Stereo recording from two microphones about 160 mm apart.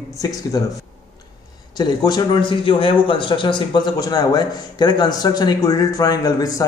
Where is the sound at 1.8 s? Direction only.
25° left (ahead or behind).